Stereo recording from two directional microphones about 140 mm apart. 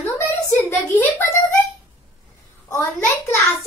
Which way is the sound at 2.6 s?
20° left (ahead or behind).